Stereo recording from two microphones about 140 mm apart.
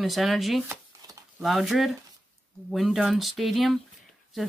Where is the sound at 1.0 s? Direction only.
25° right (ahead or behind).